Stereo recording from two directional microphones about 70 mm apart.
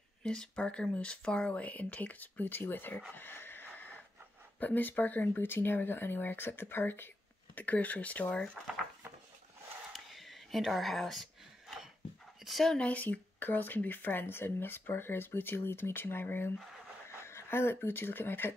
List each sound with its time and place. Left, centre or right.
0.2 s speech: centre; by 3.0 s left
3.2 s a sound: left
4.6 s speech: left
8.6 s speech: centre
9.9 s a sound: centre
12.4 s speech: centre
12.7 s speech: centre